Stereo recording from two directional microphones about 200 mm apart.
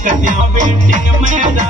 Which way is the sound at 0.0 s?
40° right (ahead or behind).